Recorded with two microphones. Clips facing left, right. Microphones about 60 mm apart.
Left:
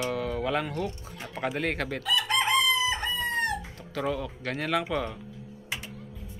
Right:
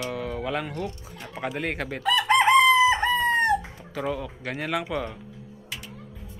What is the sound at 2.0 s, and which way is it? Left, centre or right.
Chicken, right.